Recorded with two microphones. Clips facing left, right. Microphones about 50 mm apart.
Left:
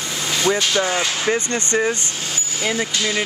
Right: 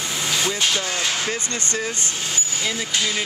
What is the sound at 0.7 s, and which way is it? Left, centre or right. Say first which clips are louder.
Speech: left 4 dB; left.